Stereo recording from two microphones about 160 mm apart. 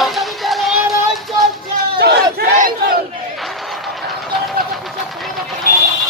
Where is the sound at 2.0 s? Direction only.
80° right.